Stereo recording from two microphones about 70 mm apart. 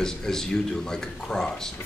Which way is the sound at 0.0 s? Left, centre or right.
Centre.